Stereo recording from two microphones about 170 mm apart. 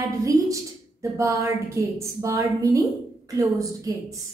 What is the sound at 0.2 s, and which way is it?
A woman's voice, 20° right (ahead or behind).